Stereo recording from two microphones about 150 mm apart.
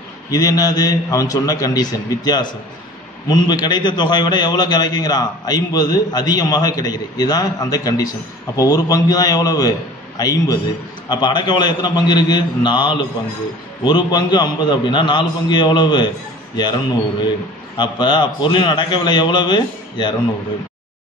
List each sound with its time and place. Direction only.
0.3 s a man's voice: 25° left (ahead or behind)
17.7 s a man's voice: 30° left (ahead or behind)